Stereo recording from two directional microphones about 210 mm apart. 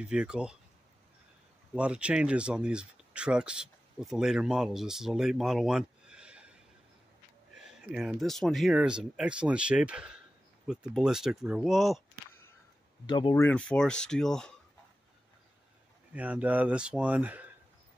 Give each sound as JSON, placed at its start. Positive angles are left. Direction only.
{"t": 0.0, "sound": "speech", "side_deg": -5}
{"t": 1.8, "sound": "speech", "side_deg": -5}
{"t": 13.0, "sound": "speech", "side_deg": 20}
{"t": 13.4, "sound": "speech", "side_deg": 5}
{"t": 16.1, "sound": "speech", "side_deg": -5}